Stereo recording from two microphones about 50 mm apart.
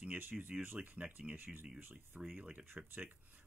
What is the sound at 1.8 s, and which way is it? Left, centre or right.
Speech, right.